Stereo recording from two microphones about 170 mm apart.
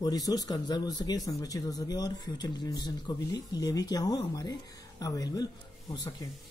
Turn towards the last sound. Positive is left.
turn(degrees=25)  # may be behind; listen again after turning